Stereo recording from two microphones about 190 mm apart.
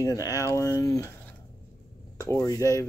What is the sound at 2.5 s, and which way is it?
Speech, 15° left (ahead or behind).